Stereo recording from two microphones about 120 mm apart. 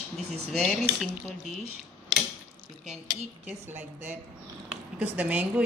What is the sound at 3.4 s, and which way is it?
Speech, 15° right (ahead or behind).